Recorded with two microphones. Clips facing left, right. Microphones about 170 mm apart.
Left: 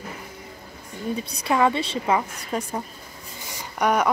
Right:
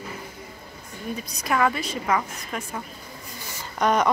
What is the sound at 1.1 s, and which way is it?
A woman's voice, 30° left (ahead or behind).